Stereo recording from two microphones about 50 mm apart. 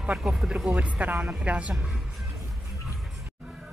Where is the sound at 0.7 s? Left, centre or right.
Right.